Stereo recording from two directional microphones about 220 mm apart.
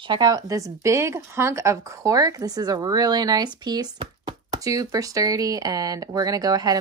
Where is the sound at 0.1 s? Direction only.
15° right (ahead or behind).